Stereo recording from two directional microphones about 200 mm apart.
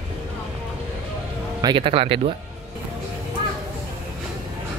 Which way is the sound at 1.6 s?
25° right (ahead or behind).